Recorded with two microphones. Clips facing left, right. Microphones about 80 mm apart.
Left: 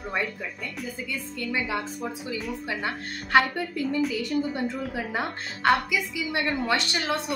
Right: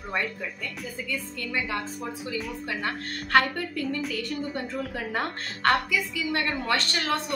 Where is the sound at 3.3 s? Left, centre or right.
Centre.